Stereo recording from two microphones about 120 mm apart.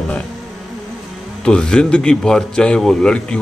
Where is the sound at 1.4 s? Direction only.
5° left (ahead or behind).